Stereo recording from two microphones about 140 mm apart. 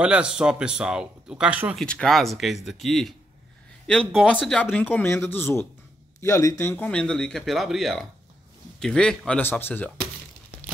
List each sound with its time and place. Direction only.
0.0 s speech: 10° right (ahead or behind)
1.8 s speech: 5° left (ahead or behind)
4.6 s speech: 10° left (ahead or behind)
6.7 s speech: 10° left (ahead or behind)
9.4 s speech: 15° left (ahead or behind)